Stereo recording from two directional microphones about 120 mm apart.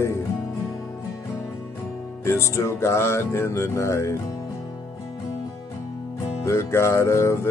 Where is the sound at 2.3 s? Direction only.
25° left (ahead or behind).